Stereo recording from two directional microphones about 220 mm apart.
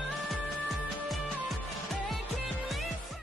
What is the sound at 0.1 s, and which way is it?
Music, centre (ahead or behind).